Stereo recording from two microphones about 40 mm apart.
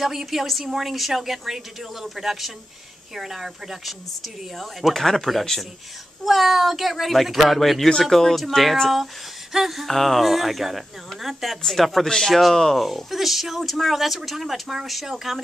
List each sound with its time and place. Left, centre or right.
0.0 s speech: centre
6.2 s speech: centre
12.1 s speech: centre